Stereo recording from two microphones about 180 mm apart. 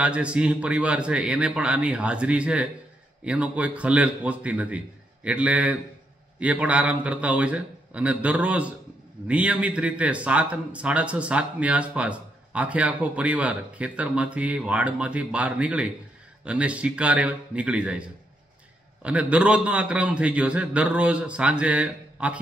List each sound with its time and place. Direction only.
0.0 s speech: 5° right (ahead or behind)
19.0 s speech: 5° right (ahead or behind)